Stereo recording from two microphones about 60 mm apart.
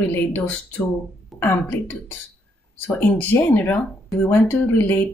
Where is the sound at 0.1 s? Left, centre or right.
Left.